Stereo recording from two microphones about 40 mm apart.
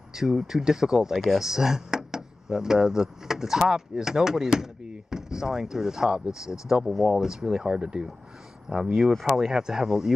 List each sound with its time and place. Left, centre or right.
0.1 s speech: centre